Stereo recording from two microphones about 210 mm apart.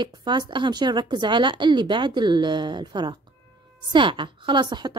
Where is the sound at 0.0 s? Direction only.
20° right (ahead or behind).